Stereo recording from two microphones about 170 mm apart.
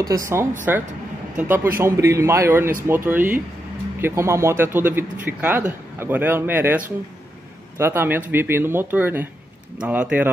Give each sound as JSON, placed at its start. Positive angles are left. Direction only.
{"t": 0.0, "sound": "speech", "side_deg": -20}